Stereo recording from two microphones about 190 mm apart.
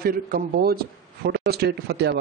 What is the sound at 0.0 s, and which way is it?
A man's voice, 50° right (ahead or behind).